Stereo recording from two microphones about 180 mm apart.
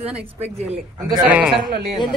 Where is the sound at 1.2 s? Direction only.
5° right (ahead or behind).